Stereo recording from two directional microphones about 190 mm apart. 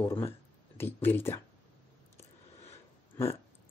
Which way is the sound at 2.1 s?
35° left (ahead or behind).